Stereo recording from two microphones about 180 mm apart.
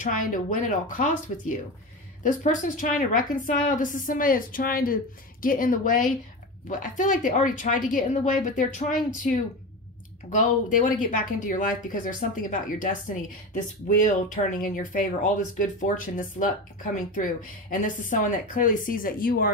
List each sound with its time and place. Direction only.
0.0 s speech: 50° left (ahead or behind)
10.3 s speech: 45° left (ahead or behind)